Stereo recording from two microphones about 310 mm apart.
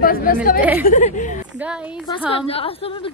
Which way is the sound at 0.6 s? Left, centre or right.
Centre.